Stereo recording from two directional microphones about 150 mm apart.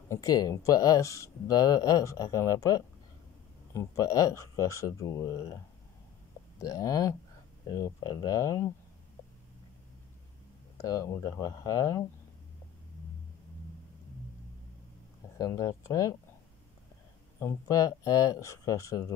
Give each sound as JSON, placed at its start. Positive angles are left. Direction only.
{"t": 0.1, "sound": "speech", "side_deg": 20}
{"t": 6.6, "sound": "speech", "side_deg": 20}
{"t": 10.8, "sound": "speech", "side_deg": 20}
{"t": 15.3, "sound": "speech", "side_deg": 20}
{"t": 17.4, "sound": "speech", "side_deg": 20}